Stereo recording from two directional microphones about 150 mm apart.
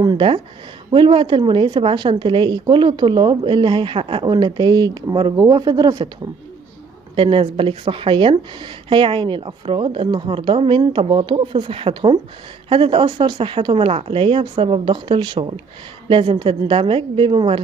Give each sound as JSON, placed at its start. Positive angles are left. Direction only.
{"t": 0.0, "sound": "a woman's voice", "side_deg": -35}
{"t": 7.2, "sound": "a woman's voice", "side_deg": -35}